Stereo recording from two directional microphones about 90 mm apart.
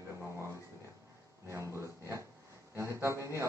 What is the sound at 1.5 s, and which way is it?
Speech, 30° right (ahead or behind).